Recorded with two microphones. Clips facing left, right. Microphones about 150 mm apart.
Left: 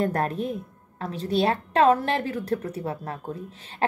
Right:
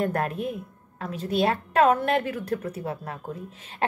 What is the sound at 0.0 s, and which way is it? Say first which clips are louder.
A woman's voice: left 1 dB; 35° left (ahead or behind).